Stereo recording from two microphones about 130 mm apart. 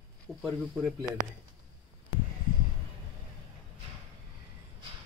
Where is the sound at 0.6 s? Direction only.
5° right (ahead or behind).